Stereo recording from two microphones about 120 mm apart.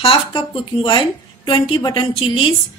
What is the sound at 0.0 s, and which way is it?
A woman's voice, 50° left (ahead or behind).